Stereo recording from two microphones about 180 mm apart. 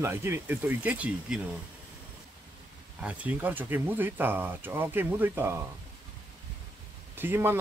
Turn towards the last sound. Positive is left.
turn(degrees=-10)  # may be behind; listen again after turning